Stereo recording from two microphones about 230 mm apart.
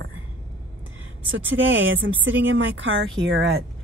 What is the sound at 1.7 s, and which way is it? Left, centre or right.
Speech, right.